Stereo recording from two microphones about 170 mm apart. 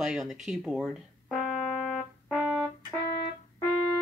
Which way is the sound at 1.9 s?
Centre (ahead or behind).